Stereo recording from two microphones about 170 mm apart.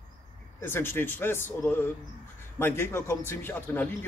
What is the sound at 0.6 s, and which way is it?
A man's voice, 15° left (ahead or behind).